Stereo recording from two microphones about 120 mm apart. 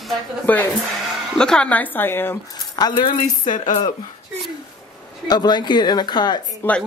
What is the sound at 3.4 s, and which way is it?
Speech, 90° left.